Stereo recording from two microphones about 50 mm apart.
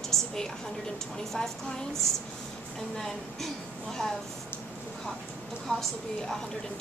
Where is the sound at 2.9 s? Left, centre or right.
Centre.